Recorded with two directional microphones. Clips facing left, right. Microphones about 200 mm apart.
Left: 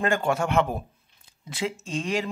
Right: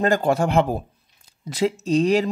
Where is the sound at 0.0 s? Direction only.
35° right (ahead or behind).